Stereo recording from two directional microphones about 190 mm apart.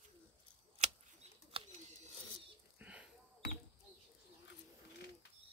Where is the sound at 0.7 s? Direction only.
35° right (ahead or behind).